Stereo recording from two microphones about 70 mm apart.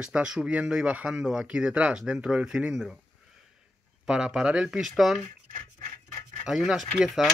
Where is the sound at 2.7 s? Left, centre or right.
Centre.